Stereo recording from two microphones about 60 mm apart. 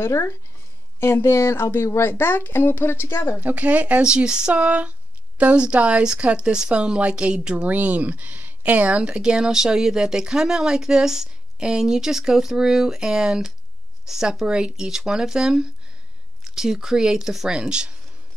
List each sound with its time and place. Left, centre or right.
0.0 s speech: left
3.4 s speech: right
4.0 s speech: centre